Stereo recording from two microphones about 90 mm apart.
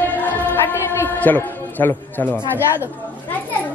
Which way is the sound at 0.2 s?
25° left (ahead or behind).